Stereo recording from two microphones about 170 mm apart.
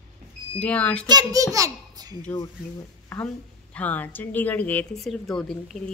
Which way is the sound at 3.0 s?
10° left (ahead or behind).